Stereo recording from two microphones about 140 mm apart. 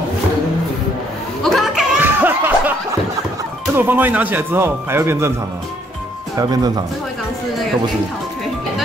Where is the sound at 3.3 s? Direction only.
15° right (ahead or behind).